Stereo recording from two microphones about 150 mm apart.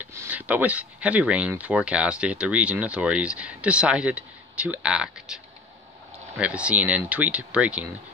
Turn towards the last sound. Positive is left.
turn(degrees=-10)  # may be behind; listen again after turning